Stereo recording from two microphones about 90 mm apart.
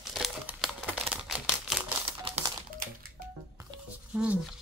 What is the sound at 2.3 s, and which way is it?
Typewriter, 90° right.